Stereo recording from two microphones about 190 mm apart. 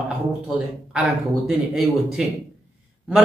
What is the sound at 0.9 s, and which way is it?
Speech, 5° right (ahead or behind).